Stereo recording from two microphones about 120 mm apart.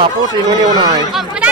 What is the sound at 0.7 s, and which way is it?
Speech, 35° right (ahead or behind).